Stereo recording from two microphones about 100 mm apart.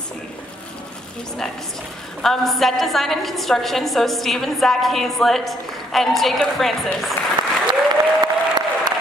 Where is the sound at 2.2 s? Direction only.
Centre (ahead or behind).